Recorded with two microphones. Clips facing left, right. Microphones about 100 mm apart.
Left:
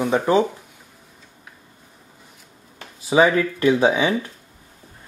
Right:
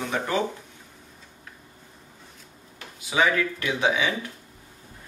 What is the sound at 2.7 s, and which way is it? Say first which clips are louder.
Speech: left 8 dB; 35° left (ahead or behind).